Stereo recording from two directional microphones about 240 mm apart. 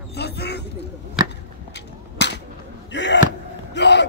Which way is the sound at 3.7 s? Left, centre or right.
Left.